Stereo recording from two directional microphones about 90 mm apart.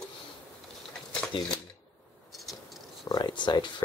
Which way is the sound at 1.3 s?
70° left (ahead or behind).